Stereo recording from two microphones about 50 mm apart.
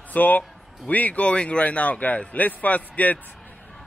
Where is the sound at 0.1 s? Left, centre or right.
Left.